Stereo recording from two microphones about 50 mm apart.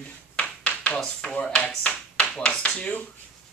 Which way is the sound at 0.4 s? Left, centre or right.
Left.